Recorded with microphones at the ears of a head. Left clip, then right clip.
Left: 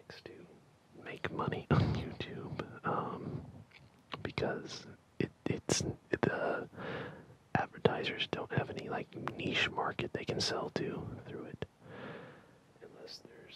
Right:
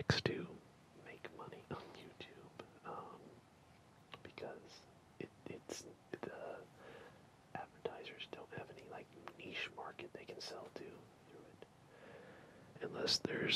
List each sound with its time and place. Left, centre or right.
0.0 s whispering: right
0.9 s whispering: left
12.8 s speech: right